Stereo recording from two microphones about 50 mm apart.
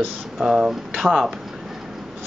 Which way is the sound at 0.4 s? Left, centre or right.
Centre.